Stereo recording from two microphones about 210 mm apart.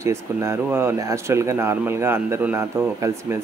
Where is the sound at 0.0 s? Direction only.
15° right (ahead or behind).